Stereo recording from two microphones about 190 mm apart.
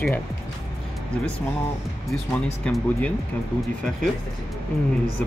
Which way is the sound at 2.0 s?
5° left (ahead or behind).